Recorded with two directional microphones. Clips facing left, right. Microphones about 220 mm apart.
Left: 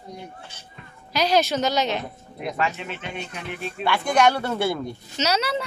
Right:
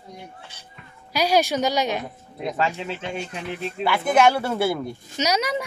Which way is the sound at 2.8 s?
30° right (ahead or behind).